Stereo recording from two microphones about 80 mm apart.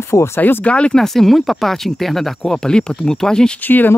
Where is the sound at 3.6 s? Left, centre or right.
Left.